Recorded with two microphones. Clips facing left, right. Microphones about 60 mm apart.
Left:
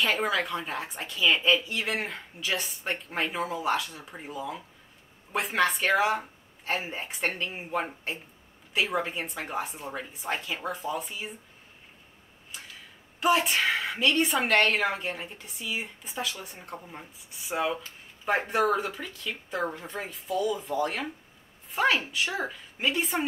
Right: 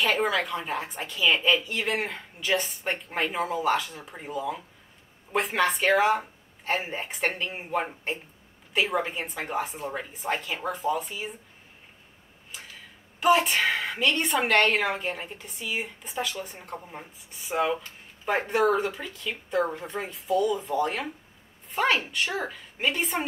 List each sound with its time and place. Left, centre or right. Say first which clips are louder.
0.0 s a woman's voice: right 2 dB; centre
13.2 s a woman's voice: right 3 dB; centre
16.6 s speech: right 2 dB; centre
17.3 s a woman's voice: right 3 dB; centre